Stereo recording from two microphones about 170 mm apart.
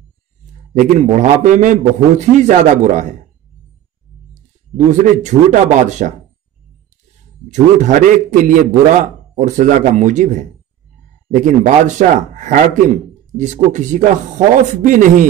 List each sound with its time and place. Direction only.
0.7 s a man's voice: 50° right (ahead or behind)
4.3 s speech: 45° right (ahead or behind)
7.4 s a man's voice: 45° right (ahead or behind)